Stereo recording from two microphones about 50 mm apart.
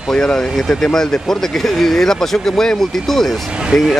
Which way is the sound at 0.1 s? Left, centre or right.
Centre.